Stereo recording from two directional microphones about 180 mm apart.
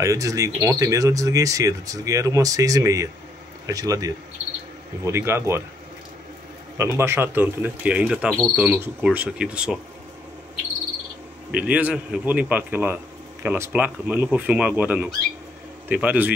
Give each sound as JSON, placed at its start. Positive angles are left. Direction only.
{"t": 0.0, "sound": "speech", "side_deg": -15}
{"t": 6.8, "sound": "speech", "side_deg": -15}
{"t": 11.5, "sound": "speech", "side_deg": -5}